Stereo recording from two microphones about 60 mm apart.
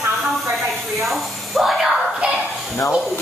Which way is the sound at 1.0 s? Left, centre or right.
Centre.